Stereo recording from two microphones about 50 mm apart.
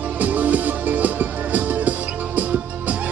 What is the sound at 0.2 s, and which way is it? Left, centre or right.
Music, right.